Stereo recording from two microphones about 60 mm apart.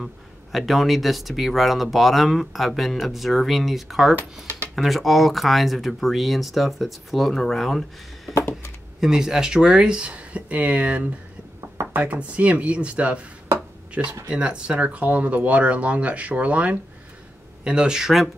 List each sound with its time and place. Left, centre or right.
0.0 s speech: centre
9.0 s speech: centre
14.2 s speech: centre